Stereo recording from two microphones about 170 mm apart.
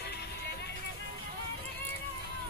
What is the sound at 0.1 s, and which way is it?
Music, 70° left (ahead or behind).